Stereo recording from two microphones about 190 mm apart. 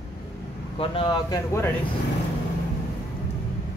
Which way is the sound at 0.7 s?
25° left (ahead or behind).